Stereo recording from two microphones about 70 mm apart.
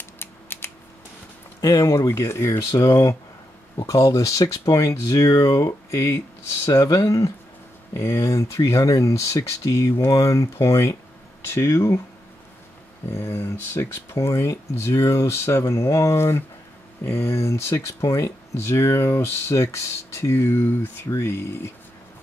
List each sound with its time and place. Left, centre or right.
0.2 s typing: left
1.6 s speech: left
2.0 s speech: left
5.3 s speech: left
11.4 s speech: left
13.1 s speech: left